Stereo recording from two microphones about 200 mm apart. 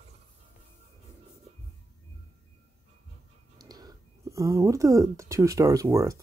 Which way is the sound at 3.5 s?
20° right (ahead or behind).